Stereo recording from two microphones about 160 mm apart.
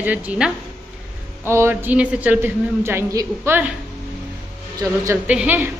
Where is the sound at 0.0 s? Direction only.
10° right (ahead or behind).